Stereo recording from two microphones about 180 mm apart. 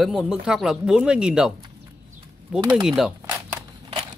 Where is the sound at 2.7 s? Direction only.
5° right (ahead or behind).